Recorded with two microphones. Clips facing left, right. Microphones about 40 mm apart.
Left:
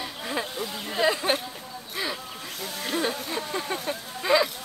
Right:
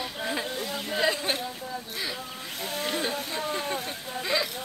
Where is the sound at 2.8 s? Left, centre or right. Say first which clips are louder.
Left 2 dB; centre.